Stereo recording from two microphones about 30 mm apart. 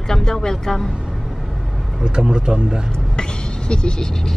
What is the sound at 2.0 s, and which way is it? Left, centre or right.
Speech, right.